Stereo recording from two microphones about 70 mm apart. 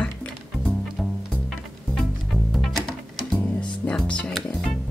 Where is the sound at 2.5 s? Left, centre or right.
Centre.